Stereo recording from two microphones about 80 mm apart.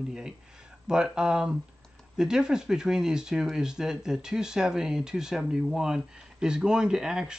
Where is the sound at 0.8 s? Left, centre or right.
Centre.